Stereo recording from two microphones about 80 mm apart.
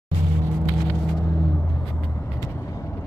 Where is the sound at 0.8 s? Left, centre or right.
Centre.